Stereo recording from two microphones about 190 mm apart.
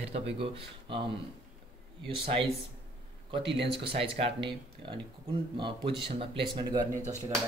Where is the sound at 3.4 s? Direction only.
70° right (ahead or behind).